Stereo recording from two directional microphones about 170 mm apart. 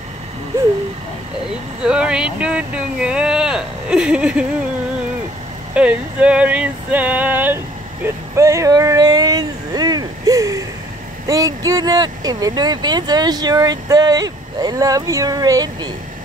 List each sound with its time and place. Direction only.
1.8 s speech: 5° right (ahead or behind)
5.8 s male singing: 5° right (ahead or behind)
11.2 s speech: 20° right (ahead or behind)